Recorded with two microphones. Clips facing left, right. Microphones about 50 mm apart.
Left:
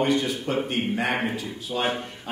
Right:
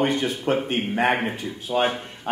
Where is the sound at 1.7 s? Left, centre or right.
Centre.